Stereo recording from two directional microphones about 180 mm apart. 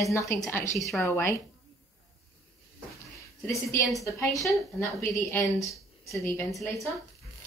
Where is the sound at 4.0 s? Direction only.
15° left (ahead or behind).